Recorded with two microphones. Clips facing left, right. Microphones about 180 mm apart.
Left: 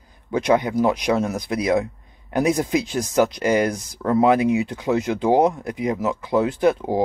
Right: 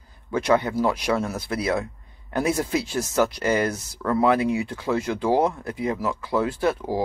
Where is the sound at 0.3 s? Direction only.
15° left (ahead or behind).